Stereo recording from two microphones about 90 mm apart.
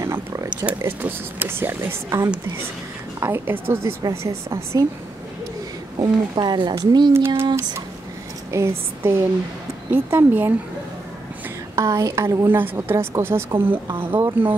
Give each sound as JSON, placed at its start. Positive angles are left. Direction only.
{"t": 0.0, "sound": "a sound", "side_deg": -30}
{"t": 0.7, "sound": "a woman's voice", "side_deg": -25}
{"t": 5.9, "sound": "speech", "side_deg": -50}
{"t": 7.2, "sound": "speech", "side_deg": -25}
{"t": 8.5, "sound": "speech", "side_deg": -30}
{"t": 11.7, "sound": "a woman's voice", "side_deg": -35}
{"t": 12.4, "sound": "speech", "side_deg": -20}